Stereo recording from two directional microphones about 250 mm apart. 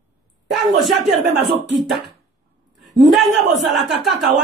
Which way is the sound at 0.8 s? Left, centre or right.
Centre.